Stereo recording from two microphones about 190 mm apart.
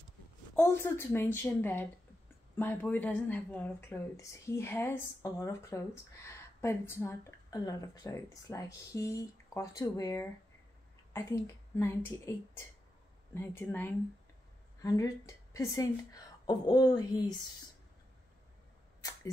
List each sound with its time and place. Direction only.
0.6 s a woman's voice: 15° left (ahead or behind)
13.3 s speech: 10° left (ahead or behind)